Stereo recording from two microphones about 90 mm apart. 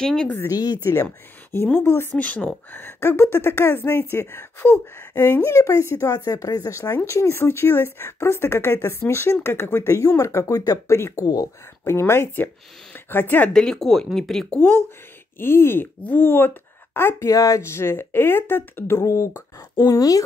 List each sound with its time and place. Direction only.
0.0 s speech: 5° left (ahead or behind)
0.5 s speech: 45° left (ahead or behind)
1.8 s a woman's voice: 25° left (ahead or behind); by 11.0 s 40° left (ahead or behind)
11.0 s a woman's voice: 30° left (ahead or behind)
11.2 s speech: 45° left (ahead or behind)
11.8 s a woman's voice: 30° left (ahead or behind)
13.5 s speech: 5° left (ahead or behind)
15.3 s a woman's voice: 25° left (ahead or behind)
17.3 s a woman's voice: 35° left (ahead or behind)
18.9 s speech: 35° left (ahead or behind)
20.0 s speech: 40° left (ahead or behind)